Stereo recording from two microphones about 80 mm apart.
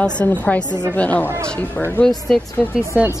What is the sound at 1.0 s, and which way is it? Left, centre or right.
Speech, centre.